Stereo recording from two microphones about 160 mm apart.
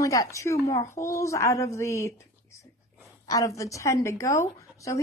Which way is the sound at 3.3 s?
20° left (ahead or behind).